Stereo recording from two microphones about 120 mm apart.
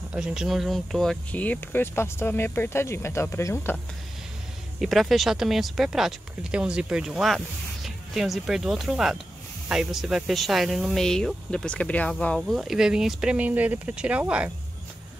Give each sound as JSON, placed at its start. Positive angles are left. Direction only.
{"t": 0.1, "sound": "speech", "side_deg": -5}
{"t": 1.3, "sound": "speech", "side_deg": 15}
{"t": 4.7, "sound": "speech", "side_deg": 0}
{"t": 12.4, "sound": "speech", "side_deg": -5}